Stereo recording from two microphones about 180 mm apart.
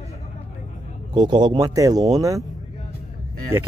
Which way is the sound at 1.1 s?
25° right (ahead or behind).